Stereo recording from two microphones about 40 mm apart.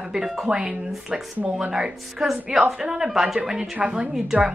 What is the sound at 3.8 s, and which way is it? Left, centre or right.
Speech, right.